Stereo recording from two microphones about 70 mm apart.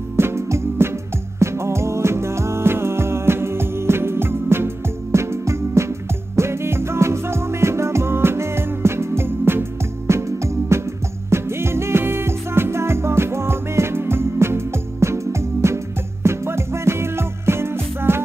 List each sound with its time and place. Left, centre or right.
0.2 s music: right